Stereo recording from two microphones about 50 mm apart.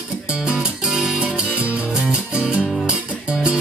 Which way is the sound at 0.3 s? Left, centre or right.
Centre.